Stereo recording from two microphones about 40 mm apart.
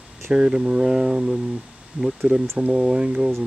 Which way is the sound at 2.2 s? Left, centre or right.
Right.